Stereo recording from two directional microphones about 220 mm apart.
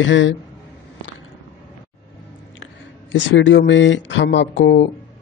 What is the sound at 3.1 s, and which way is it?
Speech, 55° left (ahead or behind).